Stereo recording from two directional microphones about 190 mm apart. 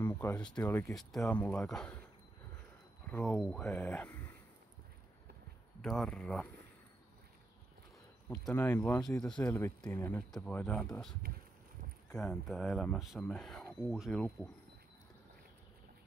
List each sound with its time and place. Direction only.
0.0 s speech: 10° left (ahead or behind)
3.1 s speech: 5° left (ahead or behind)
5.8 s speech: centre (ahead or behind)
8.3 s speech: 10° left (ahead or behind)
12.1 s speech: 5° left (ahead or behind)